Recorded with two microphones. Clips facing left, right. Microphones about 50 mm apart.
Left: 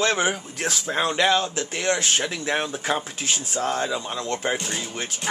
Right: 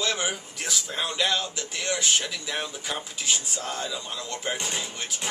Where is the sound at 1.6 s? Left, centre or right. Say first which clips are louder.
Left 5 dB; left.